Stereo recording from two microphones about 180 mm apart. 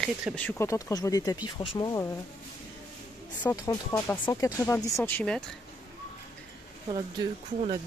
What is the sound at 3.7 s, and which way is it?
Speech, 10° left (ahead or behind).